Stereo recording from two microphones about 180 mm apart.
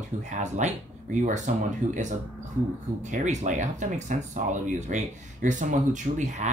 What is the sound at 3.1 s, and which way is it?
Speech, 40° right (ahead or behind).